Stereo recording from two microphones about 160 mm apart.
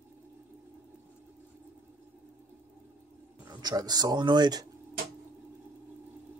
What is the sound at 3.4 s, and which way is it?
Speech, 25° right (ahead or behind).